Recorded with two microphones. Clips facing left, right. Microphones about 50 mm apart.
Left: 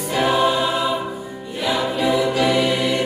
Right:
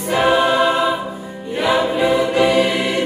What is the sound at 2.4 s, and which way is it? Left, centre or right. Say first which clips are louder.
Music: right 5 dB; centre.